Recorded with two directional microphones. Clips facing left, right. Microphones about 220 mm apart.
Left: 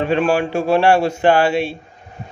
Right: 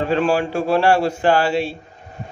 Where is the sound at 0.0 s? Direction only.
20° left (ahead or behind).